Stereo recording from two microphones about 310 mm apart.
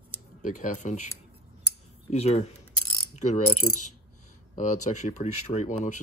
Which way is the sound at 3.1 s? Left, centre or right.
Left.